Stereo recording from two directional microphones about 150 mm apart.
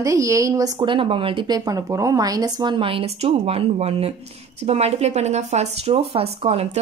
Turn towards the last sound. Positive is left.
turn(degrees=-40)  # may be behind; listen again after turning